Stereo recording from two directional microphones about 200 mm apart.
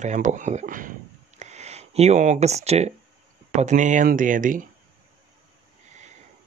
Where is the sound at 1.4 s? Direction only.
35° right (ahead or behind).